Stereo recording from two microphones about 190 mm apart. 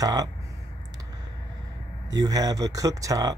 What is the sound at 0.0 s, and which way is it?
Speech, 20° right (ahead or behind).